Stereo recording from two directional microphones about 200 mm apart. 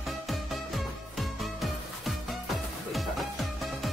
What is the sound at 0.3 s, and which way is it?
Music, centre (ahead or behind).